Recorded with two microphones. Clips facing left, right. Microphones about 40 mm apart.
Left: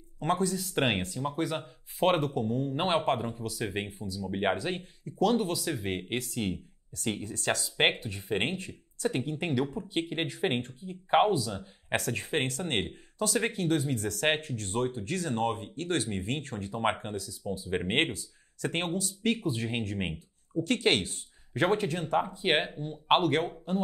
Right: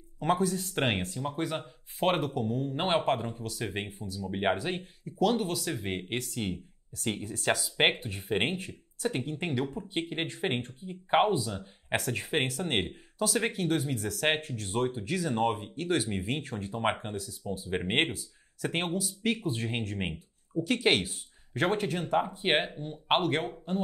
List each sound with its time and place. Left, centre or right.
0.2 s speech: centre
1.1 s speech: centre
7.2 s speech: centre
8.0 s speech: right
9.0 s speech: centre
17.1 s speech: centre
17.5 s speech: centre